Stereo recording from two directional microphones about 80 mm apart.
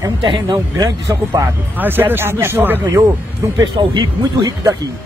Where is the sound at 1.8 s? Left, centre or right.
Right.